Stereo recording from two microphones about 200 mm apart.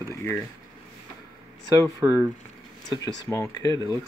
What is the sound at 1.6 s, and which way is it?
Speech, 15° right (ahead or behind).